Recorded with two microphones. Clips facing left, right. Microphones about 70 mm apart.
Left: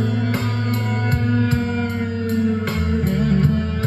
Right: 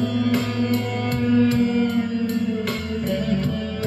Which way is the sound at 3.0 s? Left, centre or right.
Left.